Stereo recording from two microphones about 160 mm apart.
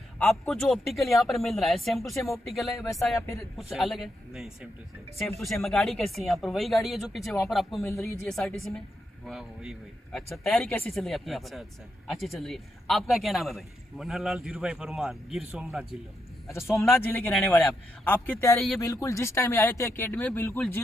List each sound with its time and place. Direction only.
0.3 s a man's voice: 5° left (ahead or behind)
7.8 s a man's voice: 15° left (ahead or behind)
8.3 s a man's voice: 5° left (ahead or behind)
16.7 s a man's voice: 15° left (ahead or behind)